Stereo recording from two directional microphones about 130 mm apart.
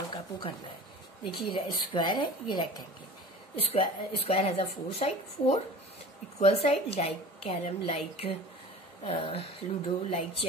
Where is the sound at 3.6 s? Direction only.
50° left (ahead or behind).